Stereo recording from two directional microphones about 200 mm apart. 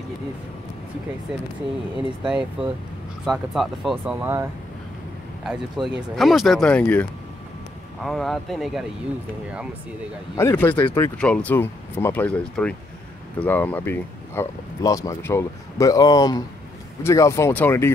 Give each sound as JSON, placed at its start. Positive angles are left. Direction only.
{"t": 2.2, "sound": "speech", "side_deg": -5}
{"t": 10.3, "sound": "speech", "side_deg": 10}